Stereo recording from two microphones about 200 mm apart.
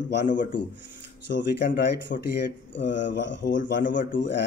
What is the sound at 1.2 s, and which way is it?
Speech, 60° left (ahead or behind).